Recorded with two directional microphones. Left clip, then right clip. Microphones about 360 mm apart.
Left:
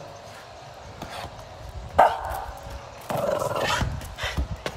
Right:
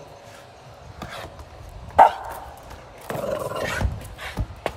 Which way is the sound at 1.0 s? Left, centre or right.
Centre.